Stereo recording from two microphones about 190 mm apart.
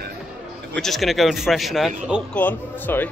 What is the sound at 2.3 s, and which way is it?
Speech, 10° left (ahead or behind).